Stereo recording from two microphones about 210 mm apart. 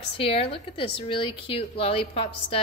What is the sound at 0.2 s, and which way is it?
A woman's voice, 25° left (ahead or behind).